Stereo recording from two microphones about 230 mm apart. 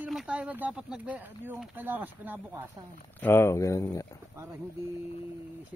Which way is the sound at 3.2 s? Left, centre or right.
Centre.